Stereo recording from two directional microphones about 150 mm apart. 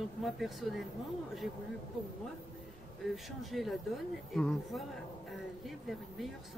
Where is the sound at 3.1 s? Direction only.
Centre (ahead or behind).